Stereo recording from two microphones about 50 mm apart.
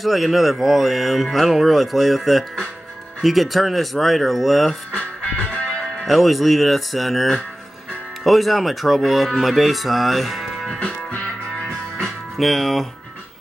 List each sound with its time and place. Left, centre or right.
0.0 s speech: centre
5.2 s music: left
6.0 s speech: centre
10.8 s music: left
12.0 s music: centre